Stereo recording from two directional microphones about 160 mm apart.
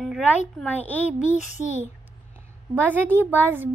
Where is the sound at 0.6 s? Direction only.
10° left (ahead or behind).